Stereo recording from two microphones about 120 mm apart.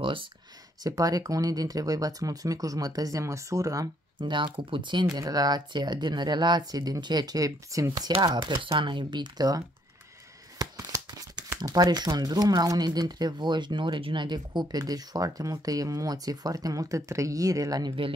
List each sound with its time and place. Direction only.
0.0 s speech: 45° right (ahead or behind)
0.8 s speech: 30° right (ahead or behind)
5.1 s speech: 30° right (ahead or behind)
8.2 s speech: 40° right (ahead or behind)
10.6 s a sound: 30° right (ahead or behind)
11.6 s speech: 35° right (ahead or behind)